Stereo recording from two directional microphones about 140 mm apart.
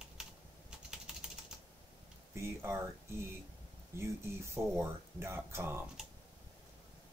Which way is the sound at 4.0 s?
20° right (ahead or behind).